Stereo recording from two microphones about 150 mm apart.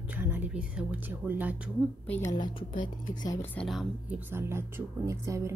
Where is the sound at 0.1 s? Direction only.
10° right (ahead or behind).